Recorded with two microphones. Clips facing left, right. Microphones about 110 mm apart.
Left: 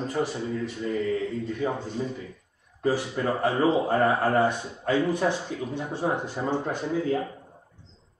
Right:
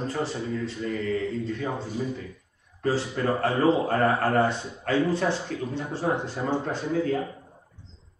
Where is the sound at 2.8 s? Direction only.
15° left (ahead or behind).